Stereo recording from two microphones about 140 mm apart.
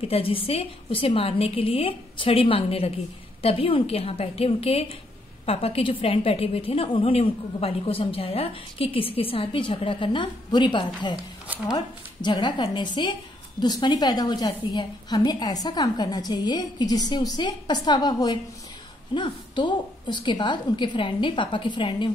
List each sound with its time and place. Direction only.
0.0 s a woman's voice: 40° left (ahead or behind)
11.4 s speech: 10° right (ahead or behind)
11.7 s a woman's voice: 35° left (ahead or behind)